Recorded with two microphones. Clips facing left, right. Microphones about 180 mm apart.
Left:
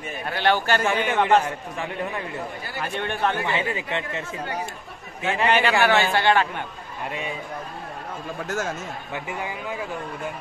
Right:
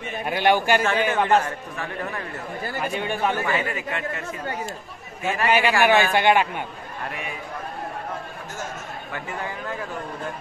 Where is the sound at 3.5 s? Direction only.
20° left (ahead or behind).